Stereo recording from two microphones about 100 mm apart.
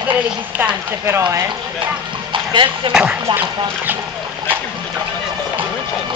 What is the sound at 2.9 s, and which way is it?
Speech, 10° right (ahead or behind).